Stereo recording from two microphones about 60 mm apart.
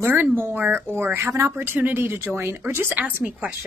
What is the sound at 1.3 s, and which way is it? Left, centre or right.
Speech, right.